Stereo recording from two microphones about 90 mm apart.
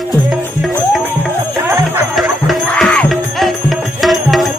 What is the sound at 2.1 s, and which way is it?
Music, centre (ahead or behind).